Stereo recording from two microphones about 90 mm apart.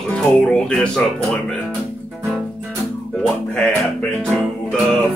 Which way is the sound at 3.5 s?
20° left (ahead or behind).